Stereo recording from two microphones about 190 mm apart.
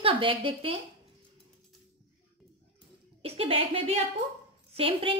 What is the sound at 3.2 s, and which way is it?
A woman's voice, 30° right (ahead or behind).